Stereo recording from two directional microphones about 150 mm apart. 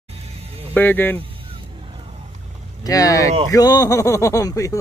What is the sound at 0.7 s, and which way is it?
Speech, 15° left (ahead or behind).